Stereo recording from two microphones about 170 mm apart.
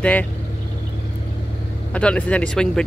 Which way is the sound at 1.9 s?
5° left (ahead or behind).